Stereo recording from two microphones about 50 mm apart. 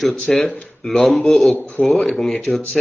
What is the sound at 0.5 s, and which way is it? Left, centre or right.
Speech, left.